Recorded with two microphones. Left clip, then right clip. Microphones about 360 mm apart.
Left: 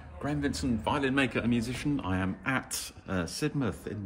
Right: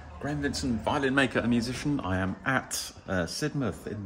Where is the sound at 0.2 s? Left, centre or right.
Centre.